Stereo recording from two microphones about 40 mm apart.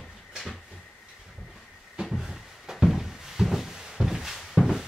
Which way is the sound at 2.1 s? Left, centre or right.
Centre.